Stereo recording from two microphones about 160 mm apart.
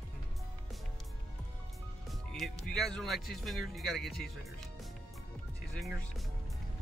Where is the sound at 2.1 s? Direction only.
Centre (ahead or behind).